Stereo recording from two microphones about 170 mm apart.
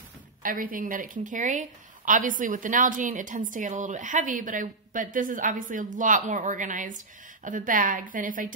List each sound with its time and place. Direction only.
0.4 s a woman's voice: 55° right (ahead or behind)